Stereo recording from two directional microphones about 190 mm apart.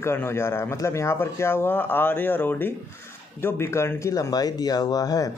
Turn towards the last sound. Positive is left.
turn(degrees=20)  # may be behind; listen again after turning